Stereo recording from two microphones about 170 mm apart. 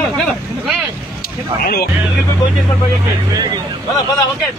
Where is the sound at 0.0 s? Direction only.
Centre (ahead or behind).